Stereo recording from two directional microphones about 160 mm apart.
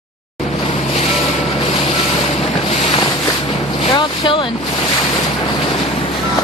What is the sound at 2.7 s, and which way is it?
Boat, 40° left (ahead or behind).